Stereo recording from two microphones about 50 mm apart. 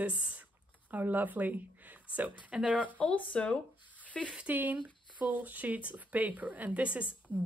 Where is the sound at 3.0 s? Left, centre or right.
Left.